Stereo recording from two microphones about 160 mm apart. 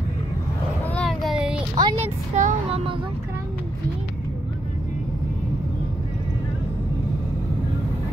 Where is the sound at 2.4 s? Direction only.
50° right (ahead or behind).